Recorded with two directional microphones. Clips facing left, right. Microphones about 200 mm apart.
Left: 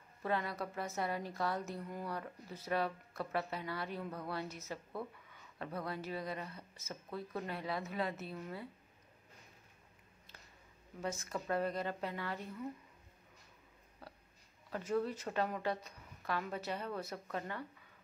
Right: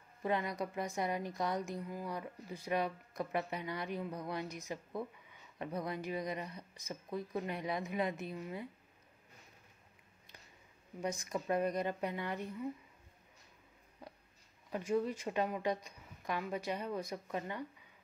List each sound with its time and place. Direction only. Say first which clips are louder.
0.2 s a woman's voice: right 2 dB; 15° right (ahead or behind)
11.0 s a woman's voice: right 2 dB; 15° right (ahead or behind)
14.0 s a sound: right 2 dB; 15° right (ahead or behind)
14.7 s a woman's voice: right 2 dB; 10° right (ahead or behind)